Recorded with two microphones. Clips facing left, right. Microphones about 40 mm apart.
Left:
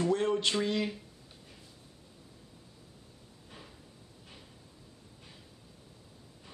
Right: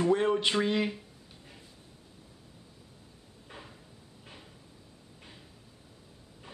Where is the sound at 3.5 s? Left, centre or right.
Right.